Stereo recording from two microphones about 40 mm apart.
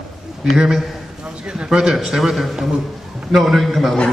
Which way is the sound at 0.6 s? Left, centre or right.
Centre.